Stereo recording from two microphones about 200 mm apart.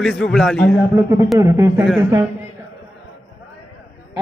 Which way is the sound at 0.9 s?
15° right (ahead or behind).